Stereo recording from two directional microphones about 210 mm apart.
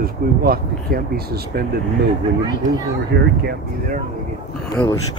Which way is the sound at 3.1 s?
50° right (ahead or behind).